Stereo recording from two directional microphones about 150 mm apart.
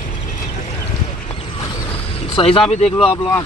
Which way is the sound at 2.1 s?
40° left (ahead or behind).